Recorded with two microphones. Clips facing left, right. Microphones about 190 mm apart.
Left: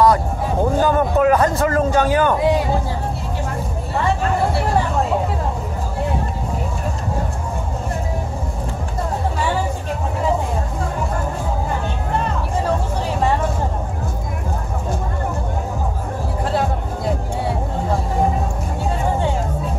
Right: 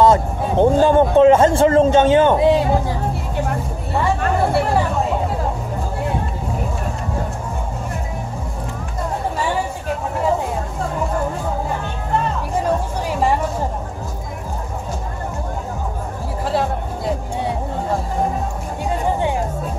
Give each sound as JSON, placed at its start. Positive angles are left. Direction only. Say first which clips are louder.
{"t": 0.0, "sound": "a man's voice", "louder": "right 1 dB", "side_deg": -25}
{"t": 16.4, "sound": "music", "louder": "right 1 dB", "side_deg": 0}